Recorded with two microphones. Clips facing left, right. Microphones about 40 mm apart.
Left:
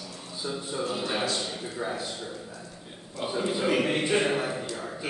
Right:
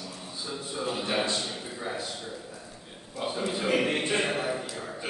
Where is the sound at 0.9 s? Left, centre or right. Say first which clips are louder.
Right 2 dB; centre.